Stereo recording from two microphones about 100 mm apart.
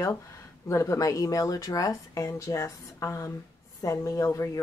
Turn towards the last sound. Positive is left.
turn(degrees=30)  # may be behind; listen again after turning